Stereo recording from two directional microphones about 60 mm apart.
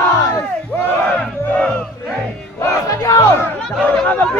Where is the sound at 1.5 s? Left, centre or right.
Left.